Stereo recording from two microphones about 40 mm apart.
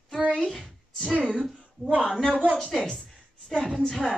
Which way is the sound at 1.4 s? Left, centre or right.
Centre.